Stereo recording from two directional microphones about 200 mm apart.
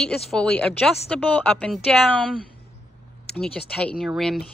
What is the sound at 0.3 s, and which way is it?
Speech, 5° left (ahead or behind).